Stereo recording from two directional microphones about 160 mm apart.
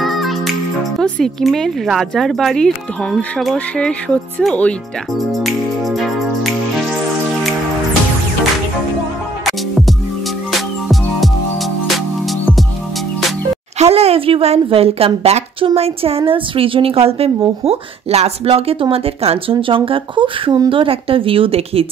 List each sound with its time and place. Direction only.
0.0 s speech: centre (ahead or behind)
5.3 s music: centre (ahead or behind)
9.4 s music: centre (ahead or behind)
13.7 s a woman's voice: 40° right (ahead or behind)